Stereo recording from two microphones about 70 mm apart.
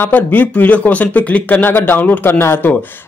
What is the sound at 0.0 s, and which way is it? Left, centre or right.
Speech, left.